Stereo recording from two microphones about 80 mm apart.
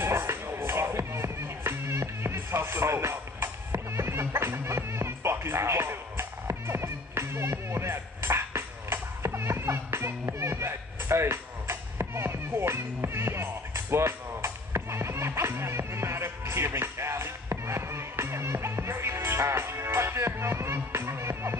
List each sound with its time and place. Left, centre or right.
0.0 s music: right